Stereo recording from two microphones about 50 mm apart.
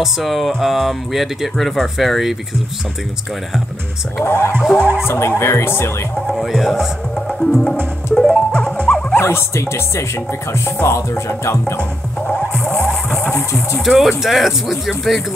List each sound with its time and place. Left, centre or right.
0.0 s speech: centre
4.2 s music: left
5.0 s speech: left
6.3 s speech: centre
7.2 s music: centre
8.5 s music: left
9.2 s speech: left
12.8 s music: centre
13.3 s speech: left
13.8 s speech: centre